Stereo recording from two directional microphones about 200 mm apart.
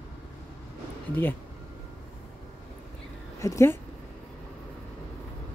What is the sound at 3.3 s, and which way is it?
Speech, 15° left (ahead or behind).